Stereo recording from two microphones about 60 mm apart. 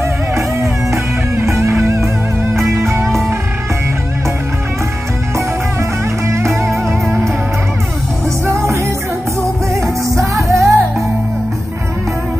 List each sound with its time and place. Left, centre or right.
0.6 s music: right
6.2 s music: right
8.5 s music: right
10.5 s music: centre